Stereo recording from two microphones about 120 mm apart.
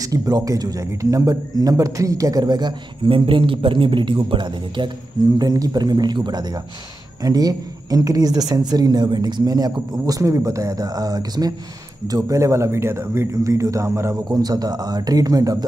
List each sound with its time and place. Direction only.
0.0 s a man's voice: 30° right (ahead or behind)